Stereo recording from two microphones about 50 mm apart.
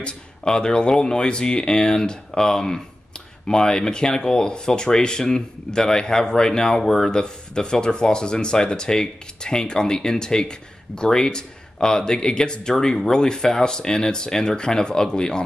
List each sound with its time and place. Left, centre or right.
0.0 s speech: centre